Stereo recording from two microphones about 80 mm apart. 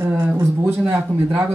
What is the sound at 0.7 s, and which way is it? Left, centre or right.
Speech, right.